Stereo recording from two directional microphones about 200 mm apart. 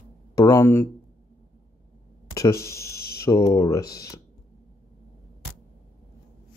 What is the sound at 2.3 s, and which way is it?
Speech, 15° left (ahead or behind).